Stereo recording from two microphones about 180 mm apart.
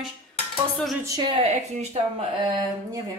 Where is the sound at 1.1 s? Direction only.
25° right (ahead or behind).